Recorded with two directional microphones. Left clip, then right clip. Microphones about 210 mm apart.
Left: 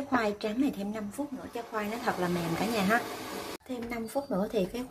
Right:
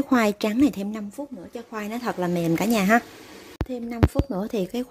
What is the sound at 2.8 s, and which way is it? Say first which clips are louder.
Speech: right 7 dB; 55° right (ahead or behind).